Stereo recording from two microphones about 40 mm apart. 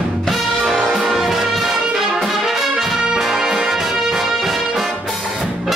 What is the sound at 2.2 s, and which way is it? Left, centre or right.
Brass instrument, centre.